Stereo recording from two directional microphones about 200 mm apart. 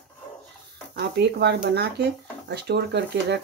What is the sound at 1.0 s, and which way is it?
Speech, 55° right (ahead or behind).